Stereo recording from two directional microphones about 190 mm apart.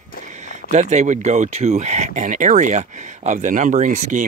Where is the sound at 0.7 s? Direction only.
40° right (ahead or behind).